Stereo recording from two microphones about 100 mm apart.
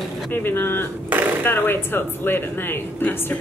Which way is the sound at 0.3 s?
20° left (ahead or behind).